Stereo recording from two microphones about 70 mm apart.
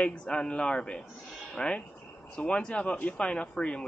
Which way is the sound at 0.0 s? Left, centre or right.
Centre.